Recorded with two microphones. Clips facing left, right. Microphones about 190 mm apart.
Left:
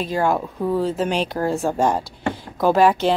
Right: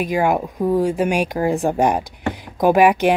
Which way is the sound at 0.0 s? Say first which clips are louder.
Right 2 dB; 15° right (ahead or behind).